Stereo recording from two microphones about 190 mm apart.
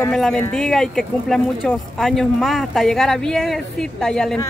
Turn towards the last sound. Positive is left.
turn(degrees=5)  # may be behind; listen again after turning